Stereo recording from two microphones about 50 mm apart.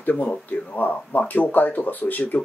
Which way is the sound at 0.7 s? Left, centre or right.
Left.